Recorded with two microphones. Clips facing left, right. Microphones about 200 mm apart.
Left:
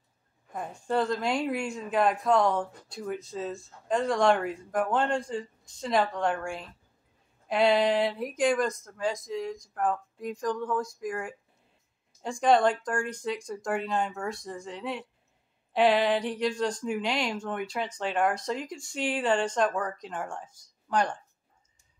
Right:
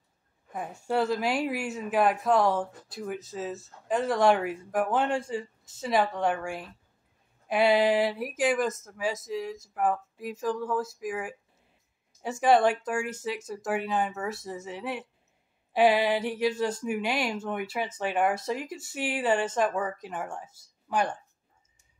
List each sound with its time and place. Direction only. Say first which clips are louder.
0.5 s a woman's voice: even; 5° right (ahead or behind)